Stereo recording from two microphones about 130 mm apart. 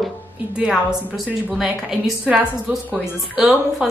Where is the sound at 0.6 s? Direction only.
5° right (ahead or behind).